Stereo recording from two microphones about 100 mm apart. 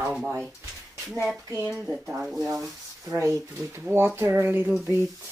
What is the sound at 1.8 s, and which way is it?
Speech, 5° right (ahead or behind).